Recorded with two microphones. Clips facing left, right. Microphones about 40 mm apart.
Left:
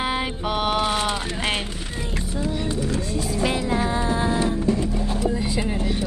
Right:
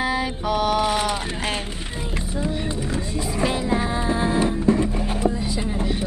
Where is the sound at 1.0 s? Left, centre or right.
Left.